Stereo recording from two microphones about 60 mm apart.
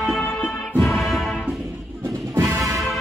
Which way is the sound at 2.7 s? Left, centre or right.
Centre.